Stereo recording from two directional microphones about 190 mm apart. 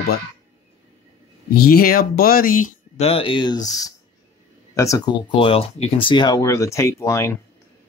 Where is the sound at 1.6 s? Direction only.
50° left (ahead or behind).